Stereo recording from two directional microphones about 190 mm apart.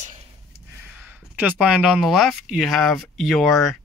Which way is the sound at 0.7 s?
10° right (ahead or behind).